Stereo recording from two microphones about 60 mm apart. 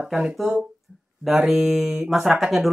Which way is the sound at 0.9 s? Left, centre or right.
Centre.